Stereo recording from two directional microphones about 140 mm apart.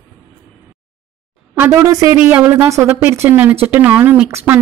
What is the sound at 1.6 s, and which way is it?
A woman's voice, 20° right (ahead or behind).